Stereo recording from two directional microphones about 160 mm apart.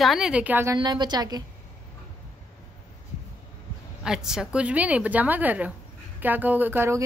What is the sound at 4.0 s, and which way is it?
A woman's voice, 5° right (ahead or behind).